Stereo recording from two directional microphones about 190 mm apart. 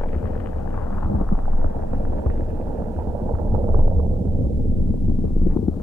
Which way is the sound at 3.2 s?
15° right (ahead or behind).